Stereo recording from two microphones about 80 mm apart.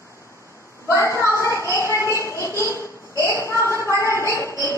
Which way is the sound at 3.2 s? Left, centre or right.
Left.